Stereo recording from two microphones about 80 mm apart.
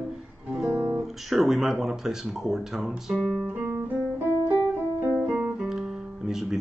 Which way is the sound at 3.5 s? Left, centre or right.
Right.